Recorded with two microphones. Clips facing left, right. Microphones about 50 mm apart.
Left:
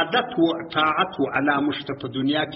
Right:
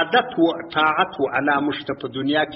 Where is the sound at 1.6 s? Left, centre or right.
Centre.